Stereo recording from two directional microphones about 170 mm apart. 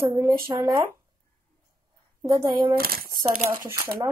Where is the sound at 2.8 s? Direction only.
60° right (ahead or behind).